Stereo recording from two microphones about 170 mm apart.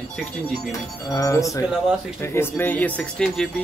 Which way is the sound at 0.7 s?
20° left (ahead or behind).